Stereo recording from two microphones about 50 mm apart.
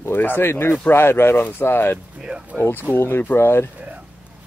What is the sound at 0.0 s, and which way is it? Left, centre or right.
Speech, left.